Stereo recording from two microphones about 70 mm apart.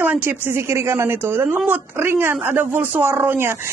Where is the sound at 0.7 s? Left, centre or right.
Right.